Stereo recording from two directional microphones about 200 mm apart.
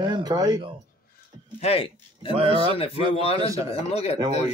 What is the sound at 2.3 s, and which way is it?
Speech, 30° right (ahead or behind).